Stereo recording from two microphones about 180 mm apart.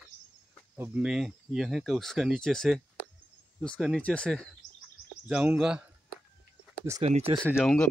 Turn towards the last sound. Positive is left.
turn(degrees=5)  # may be behind; listen again after turning